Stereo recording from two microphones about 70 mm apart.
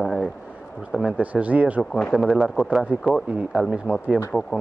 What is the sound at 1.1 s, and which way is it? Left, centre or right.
Speech, centre.